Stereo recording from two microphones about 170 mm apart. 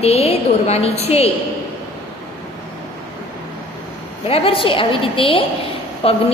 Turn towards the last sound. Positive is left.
turn(degrees=35)  # may be behind; listen again after turning